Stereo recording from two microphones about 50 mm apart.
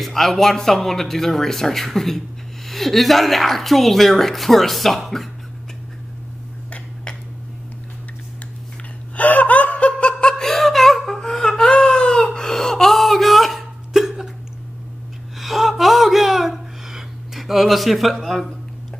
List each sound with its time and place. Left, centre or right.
0.0 s a woman's voice: centre
9.1 s laughter: left
10.3 s whimper: centre
15.3 s gasp: centre